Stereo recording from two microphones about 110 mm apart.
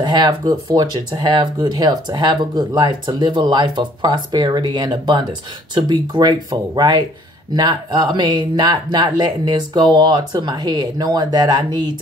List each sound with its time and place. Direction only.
0.0 s speech: 40° right (ahead or behind)